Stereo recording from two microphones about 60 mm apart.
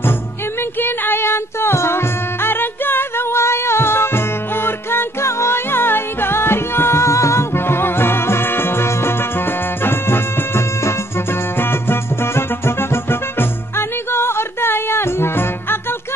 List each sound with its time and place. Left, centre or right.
0.6 s music: left